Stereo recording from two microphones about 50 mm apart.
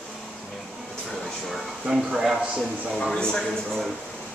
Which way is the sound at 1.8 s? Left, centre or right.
Centre.